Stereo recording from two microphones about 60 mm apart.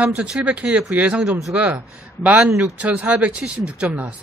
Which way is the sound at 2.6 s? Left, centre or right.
Right.